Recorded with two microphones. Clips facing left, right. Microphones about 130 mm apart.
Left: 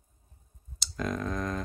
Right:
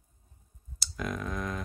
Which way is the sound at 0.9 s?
5° right (ahead or behind).